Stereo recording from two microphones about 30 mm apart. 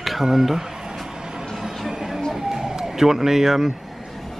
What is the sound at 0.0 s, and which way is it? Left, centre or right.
Speech, centre.